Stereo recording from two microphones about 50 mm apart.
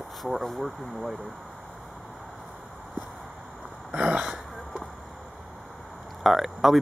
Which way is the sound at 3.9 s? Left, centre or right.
Right.